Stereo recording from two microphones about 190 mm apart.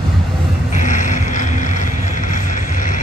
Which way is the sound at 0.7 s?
40° left (ahead or behind).